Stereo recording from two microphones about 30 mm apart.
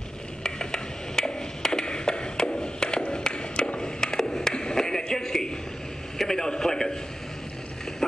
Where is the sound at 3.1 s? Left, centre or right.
Left.